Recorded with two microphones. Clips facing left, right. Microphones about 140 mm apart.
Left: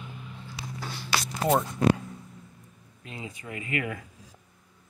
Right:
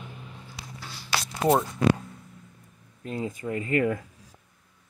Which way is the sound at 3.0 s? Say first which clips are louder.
Right 9 dB; 45° right (ahead or behind).